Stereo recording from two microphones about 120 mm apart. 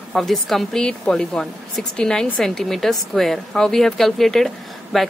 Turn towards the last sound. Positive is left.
turn(degrees=0)  # may be behind; listen again after turning